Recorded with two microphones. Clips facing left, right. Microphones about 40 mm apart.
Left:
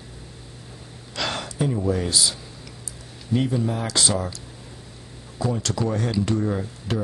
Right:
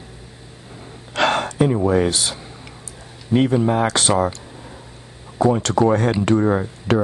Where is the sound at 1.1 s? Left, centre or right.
Right.